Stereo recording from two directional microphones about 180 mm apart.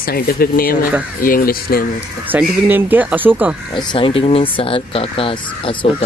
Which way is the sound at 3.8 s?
25° left (ahead or behind).